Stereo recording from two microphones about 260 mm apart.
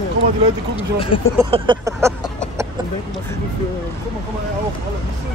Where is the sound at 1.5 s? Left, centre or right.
Centre.